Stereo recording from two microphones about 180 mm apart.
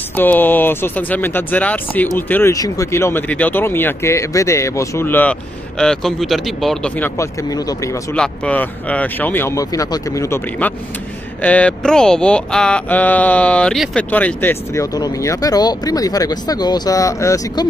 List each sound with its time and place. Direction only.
0.1 s speech: 10° left (ahead or behind)
7.2 s speech: 20° left (ahead or behind)